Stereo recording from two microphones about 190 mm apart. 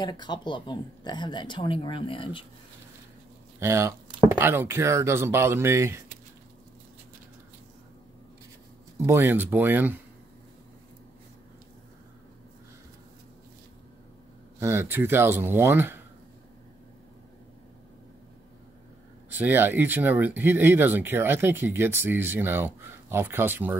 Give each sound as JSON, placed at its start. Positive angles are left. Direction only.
{"t": 0.0, "sound": "speech", "side_deg": 25}
{"t": 3.5, "sound": "speech", "side_deg": -15}
{"t": 8.9, "sound": "speech", "side_deg": -15}
{"t": 14.6, "sound": "speech", "side_deg": -15}
{"t": 19.2, "sound": "speech", "side_deg": -10}